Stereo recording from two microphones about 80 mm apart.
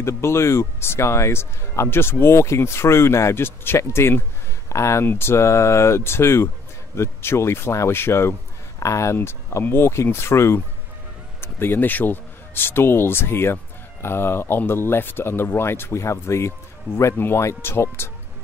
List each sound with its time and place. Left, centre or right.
0.0 s speech: left